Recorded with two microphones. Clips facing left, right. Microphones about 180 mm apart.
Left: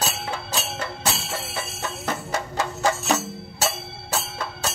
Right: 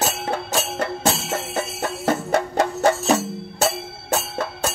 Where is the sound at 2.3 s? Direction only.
55° right (ahead or behind).